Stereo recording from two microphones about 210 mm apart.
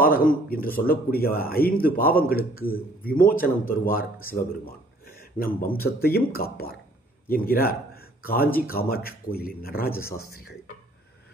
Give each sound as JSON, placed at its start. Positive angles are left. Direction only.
{"t": 0.0, "sound": "a man's voice", "side_deg": 45}